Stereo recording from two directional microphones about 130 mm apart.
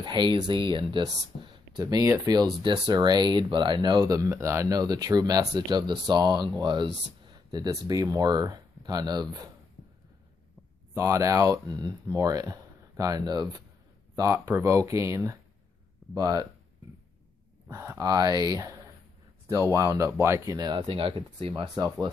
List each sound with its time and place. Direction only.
0.0 s speech: 35° right (ahead or behind)
9.8 s a sound: 90° left
11.0 s speech: 25° right (ahead or behind)
17.6 s speech: 20° right (ahead or behind); by 21.6 s 45° right (ahead or behind)